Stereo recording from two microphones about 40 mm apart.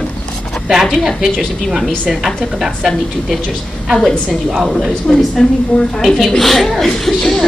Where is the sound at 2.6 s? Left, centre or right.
Centre.